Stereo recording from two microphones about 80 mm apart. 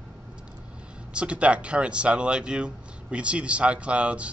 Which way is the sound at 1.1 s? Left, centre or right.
Centre.